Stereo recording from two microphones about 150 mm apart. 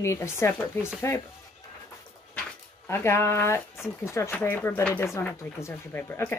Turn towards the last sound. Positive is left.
turn(degrees=15)  # may be behind; listen again after turning